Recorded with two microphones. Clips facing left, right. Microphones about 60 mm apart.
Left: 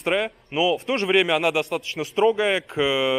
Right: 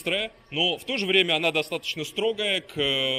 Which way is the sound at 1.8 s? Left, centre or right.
Left.